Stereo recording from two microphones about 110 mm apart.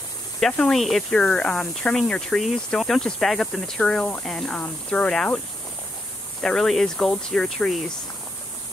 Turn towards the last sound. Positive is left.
turn(degrees=5)  # may be behind; listen again after turning